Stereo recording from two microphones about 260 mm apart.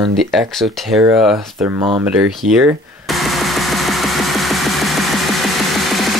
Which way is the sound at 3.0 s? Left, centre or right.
Centre.